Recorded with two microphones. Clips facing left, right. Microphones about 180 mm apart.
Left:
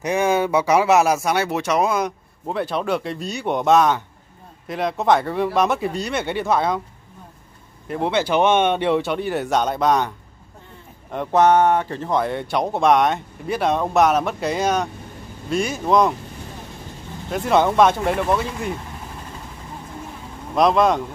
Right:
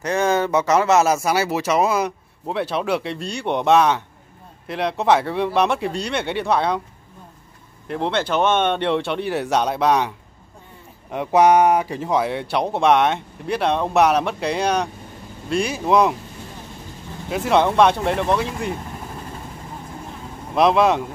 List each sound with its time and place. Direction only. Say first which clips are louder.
0.0 s speech: even; 10° left (ahead or behind)
7.9 s speech: left 2 dB; 5° left (ahead or behind)
17.3 s speech: even; centre (ahead or behind)
20.5 s speech: even; 5° right (ahead or behind)